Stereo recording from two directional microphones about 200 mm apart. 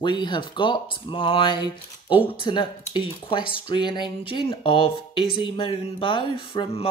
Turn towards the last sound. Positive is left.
turn(degrees=25)  # may be behind; listen again after turning